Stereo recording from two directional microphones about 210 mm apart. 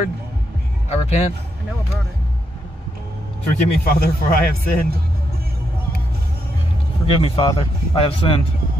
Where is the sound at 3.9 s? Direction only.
45° left (ahead or behind).